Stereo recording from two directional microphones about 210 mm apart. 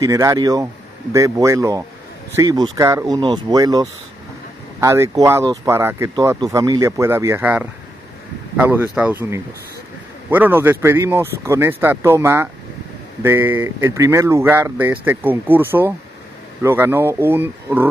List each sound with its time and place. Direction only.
0.0 s speech: 15° right (ahead or behind)